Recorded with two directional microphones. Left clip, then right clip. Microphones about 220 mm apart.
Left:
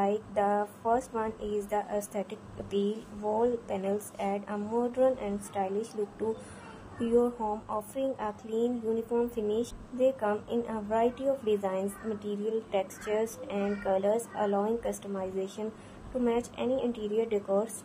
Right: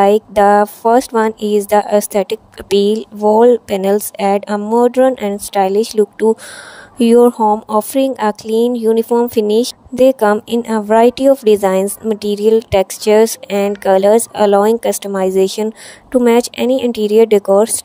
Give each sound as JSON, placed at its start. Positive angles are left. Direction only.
{"t": 0.0, "sound": "speech", "side_deg": -50}